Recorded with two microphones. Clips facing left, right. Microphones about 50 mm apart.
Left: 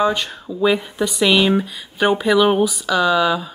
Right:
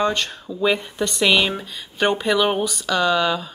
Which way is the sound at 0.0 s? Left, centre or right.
Centre.